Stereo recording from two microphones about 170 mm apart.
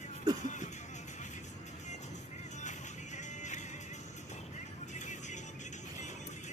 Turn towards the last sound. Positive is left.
turn(degrees=45)  # may be behind; listen again after turning